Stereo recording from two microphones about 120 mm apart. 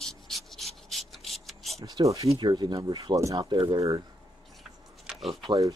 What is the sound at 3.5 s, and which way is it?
Speech, 40° right (ahead or behind).